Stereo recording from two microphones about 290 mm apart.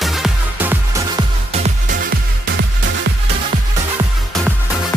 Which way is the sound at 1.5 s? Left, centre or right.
Right.